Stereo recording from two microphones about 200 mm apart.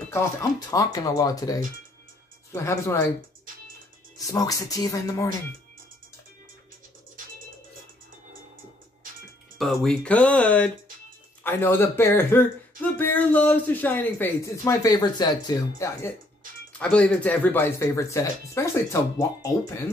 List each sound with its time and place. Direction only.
0.1 s speech: 15° left (ahead or behind)
4.3 s speech: 20° left (ahead or behind)
9.6 s speech: centre (ahead or behind); by 16.1 s 20° left (ahead or behind)
16.7 s speech: 5° left (ahead or behind)